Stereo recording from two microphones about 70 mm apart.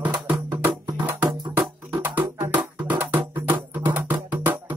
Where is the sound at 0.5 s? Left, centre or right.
Right.